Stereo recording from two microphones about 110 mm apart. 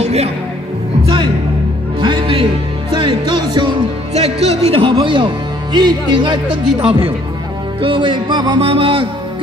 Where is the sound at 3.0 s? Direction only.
45° right (ahead or behind).